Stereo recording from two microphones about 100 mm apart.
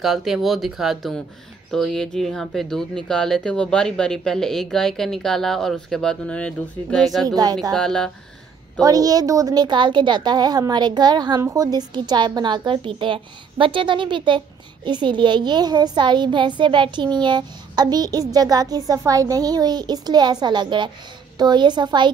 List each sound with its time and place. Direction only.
0.0 s speech: centre (ahead or behind)
7.2 s a child's voice: 40° right (ahead or behind)
7.7 s speech: 5° left (ahead or behind)
8.8 s a child's voice: 35° right (ahead or behind)